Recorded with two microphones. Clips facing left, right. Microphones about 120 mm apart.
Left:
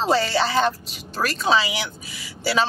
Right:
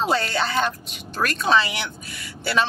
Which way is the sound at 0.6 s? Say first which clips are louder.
Left 3 dB; 35° left (ahead or behind).